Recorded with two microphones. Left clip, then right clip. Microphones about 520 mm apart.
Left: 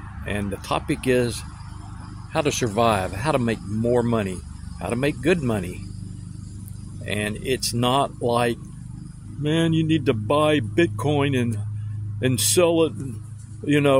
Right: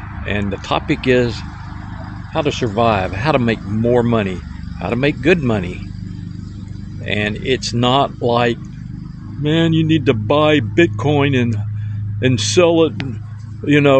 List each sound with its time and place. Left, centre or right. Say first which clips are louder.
0.2 s speech: right 7 dB; left
7.1 s speech: right 7 dB; left